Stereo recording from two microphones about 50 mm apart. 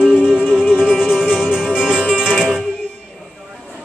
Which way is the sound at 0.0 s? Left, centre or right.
Centre.